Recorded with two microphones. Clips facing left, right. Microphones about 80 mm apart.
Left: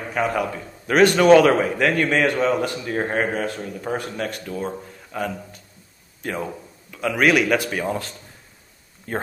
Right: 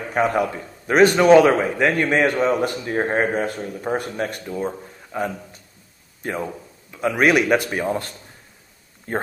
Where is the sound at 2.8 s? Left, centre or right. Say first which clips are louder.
Right 2 dB; right.